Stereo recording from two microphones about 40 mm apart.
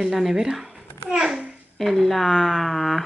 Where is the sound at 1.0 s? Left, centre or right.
Centre.